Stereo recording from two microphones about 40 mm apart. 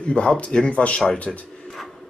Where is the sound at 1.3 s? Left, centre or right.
Centre.